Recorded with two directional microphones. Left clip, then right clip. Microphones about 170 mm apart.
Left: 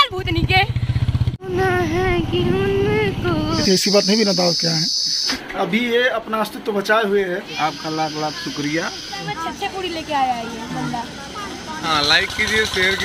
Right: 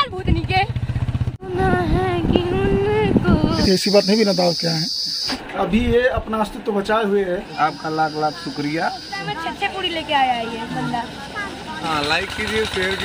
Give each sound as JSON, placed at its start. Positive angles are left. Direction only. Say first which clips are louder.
{"t": 0.0, "sound": "vehicle", "louder": "left 4 dB", "side_deg": 15}
{"t": 1.6, "sound": "a sound", "louder": "left 1 dB", "side_deg": 15}
{"t": 3.6, "sound": "cricket", "louder": "even", "side_deg": 0}
{"t": 7.6, "sound": "speech", "louder": "right 3 dB", "side_deg": -20}
{"t": 9.4, "sound": "speech", "louder": "right 2 dB", "side_deg": 15}
{"t": 11.9, "sound": "speech", "louder": "left 4 dB", "side_deg": -10}